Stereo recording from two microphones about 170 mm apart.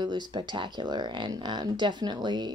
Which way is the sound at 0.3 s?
30° right (ahead or behind).